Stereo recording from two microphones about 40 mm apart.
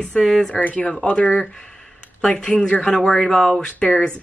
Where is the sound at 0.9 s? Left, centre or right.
Left.